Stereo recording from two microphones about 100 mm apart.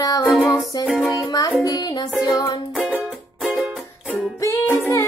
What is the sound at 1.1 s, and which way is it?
Music, 35° left (ahead or behind).